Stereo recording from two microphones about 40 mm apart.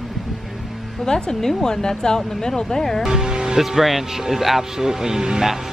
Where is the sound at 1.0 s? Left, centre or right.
Centre.